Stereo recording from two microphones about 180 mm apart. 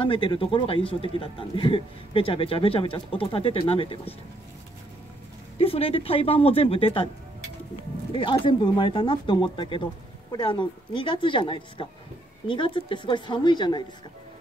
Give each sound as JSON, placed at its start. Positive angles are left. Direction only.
{"t": 0.0, "sound": "speech", "side_deg": 30}
{"t": 5.6, "sound": "speech", "side_deg": 30}
{"t": 8.1, "sound": "speech", "side_deg": 25}